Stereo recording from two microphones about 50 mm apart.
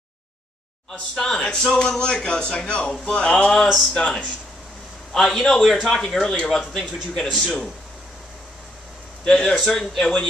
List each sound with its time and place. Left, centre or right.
1.1 s speech: centre; by 3.4 s left
3.7 s a man's voice: centre
5.1 s a man's voice: centre
6.2 s speech: centre
6.7 s speech: centre
9.2 s speech: centre